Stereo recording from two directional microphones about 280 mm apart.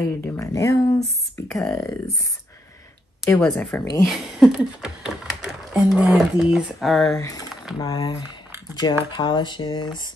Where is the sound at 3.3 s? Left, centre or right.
Centre.